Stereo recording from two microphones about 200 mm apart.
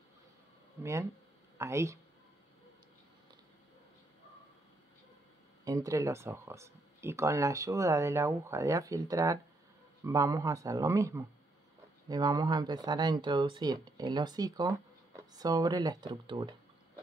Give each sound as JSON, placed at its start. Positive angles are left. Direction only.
{"t": 1.6, "sound": "speech", "side_deg": -15}
{"t": 5.7, "sound": "speech", "side_deg": -15}